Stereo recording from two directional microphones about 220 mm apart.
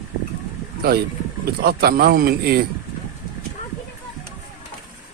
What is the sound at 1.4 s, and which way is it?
Speech, 45° right (ahead or behind).